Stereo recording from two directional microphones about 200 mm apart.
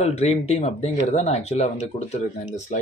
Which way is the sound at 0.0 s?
35° left (ahead or behind).